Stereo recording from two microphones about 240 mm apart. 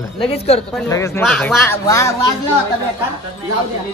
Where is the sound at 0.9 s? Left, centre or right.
Centre.